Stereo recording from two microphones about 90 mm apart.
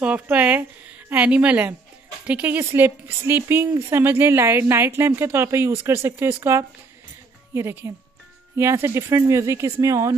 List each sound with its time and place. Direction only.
0.0 s a woman's voice: 15° right (ahead or behind); by 10.1 s 35° right (ahead or behind)